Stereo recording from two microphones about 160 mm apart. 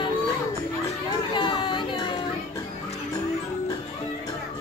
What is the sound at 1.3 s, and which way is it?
Music, 30° left (ahead or behind).